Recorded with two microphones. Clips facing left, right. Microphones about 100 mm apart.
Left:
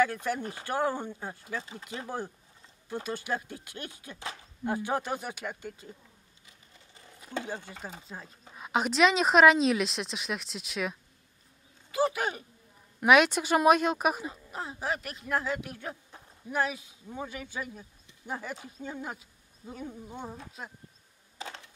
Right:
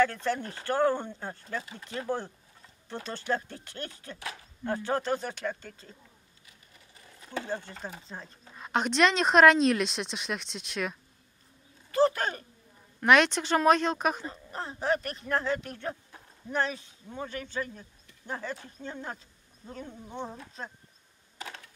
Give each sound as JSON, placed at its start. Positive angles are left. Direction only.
{"t": 0.0, "sound": "speech", "side_deg": 10}
{"t": 1.6, "sound": "speech", "side_deg": 25}
{"t": 1.9, "sound": "speech", "side_deg": 10}
{"t": 7.2, "sound": "speech", "side_deg": 10}